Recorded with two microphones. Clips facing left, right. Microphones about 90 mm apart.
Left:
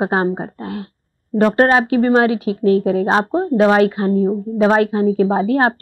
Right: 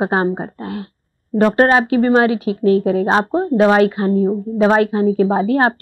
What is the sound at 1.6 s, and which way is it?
A woman's voice, 15° right (ahead or behind).